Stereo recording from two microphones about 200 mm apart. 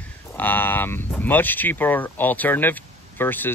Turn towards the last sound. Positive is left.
turn(degrees=10)  # may be behind; listen again after turning